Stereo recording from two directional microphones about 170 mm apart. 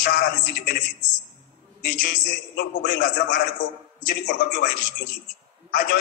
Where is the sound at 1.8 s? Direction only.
60° left (ahead or behind).